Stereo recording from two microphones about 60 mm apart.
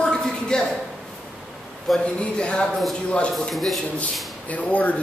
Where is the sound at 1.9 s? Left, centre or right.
Centre.